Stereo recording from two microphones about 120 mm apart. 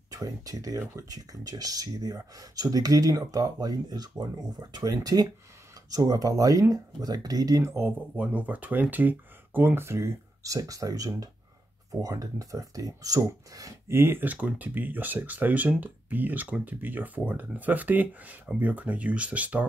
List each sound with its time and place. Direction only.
0.1 s speech: 30° right (ahead or behind); by 19.6 s 10° right (ahead or behind)